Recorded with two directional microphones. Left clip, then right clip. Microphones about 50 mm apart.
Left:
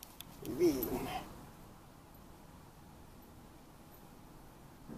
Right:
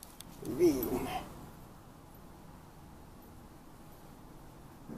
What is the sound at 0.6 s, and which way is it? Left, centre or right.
Speech, right.